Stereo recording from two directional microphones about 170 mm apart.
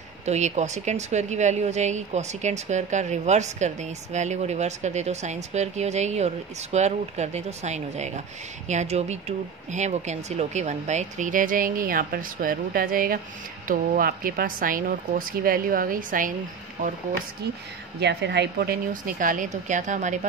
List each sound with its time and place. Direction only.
0.2 s a woman's voice: 40° right (ahead or behind)
18.0 s a woman's voice: 80° right; by 20.2 s 45° right (ahead or behind)